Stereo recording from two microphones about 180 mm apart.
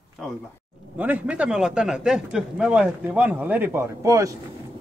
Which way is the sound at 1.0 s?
10° right (ahead or behind).